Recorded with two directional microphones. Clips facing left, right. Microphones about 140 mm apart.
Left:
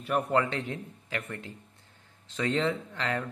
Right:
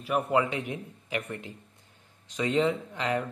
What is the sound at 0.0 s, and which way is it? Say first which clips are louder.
Speech: right 1 dB; 5° right (ahead or behind).